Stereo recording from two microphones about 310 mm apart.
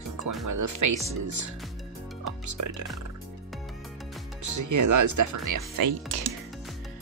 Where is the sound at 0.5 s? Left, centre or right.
Right.